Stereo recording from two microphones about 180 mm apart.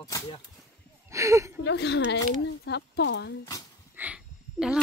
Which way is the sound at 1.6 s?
75° left (ahead or behind).